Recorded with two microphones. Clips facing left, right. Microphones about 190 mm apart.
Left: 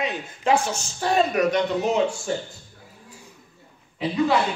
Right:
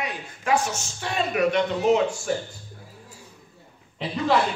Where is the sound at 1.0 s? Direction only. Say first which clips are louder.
Left 3 dB; 40° left (ahead or behind).